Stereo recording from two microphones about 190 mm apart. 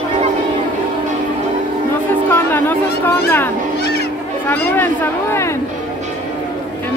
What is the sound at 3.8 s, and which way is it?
Honk, 60° left (ahead or behind).